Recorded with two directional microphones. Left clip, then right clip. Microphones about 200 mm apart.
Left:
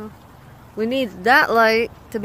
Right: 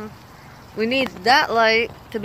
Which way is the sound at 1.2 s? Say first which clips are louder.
Left 2 dB; 45° left (ahead or behind).